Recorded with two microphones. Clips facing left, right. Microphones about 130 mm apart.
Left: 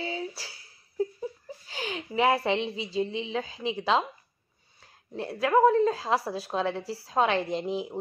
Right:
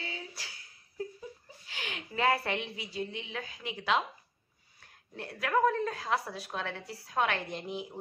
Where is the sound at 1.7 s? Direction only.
35° left (ahead or behind).